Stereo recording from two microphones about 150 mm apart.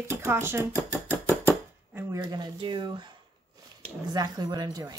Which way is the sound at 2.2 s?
30° right (ahead or behind).